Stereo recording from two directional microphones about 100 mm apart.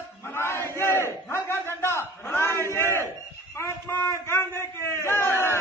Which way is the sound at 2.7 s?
25° left (ahead or behind).